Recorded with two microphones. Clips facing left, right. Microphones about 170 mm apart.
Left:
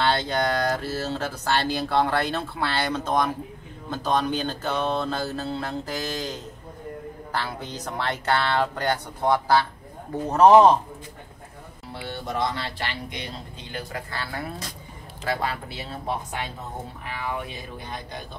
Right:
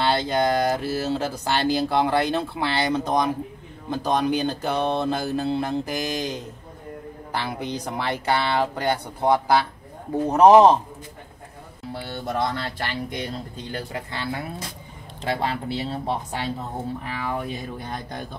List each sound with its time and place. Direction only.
0.0 s speech: 15° right (ahead or behind)
12.4 s speech: 45° right (ahead or behind)
13.9 s speech: 20° right (ahead or behind)
17.0 s speech: 40° right (ahead or behind)